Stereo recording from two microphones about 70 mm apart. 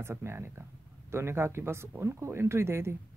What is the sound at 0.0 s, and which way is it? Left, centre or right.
Speech, right.